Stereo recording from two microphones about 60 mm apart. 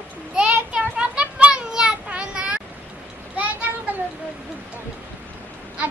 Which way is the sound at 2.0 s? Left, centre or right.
Centre.